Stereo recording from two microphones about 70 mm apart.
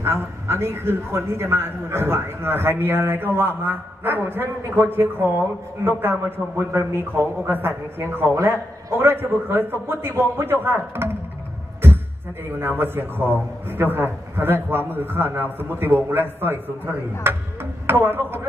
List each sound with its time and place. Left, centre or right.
0.0 s a man's voice: right
12.5 s a man's voice: right